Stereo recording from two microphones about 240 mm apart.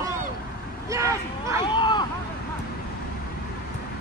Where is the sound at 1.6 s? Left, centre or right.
Centre.